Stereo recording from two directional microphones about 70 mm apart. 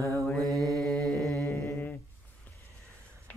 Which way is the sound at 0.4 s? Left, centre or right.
Right.